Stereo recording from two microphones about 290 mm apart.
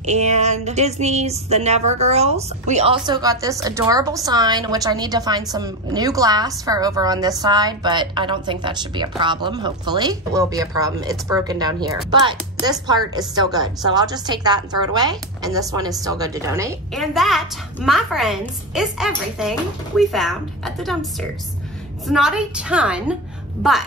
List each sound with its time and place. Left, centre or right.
0.0 s a woman's voice: right
16.9 s a woman's voice: centre